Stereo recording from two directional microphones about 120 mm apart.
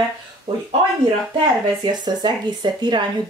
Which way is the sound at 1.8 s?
35° right (ahead or behind).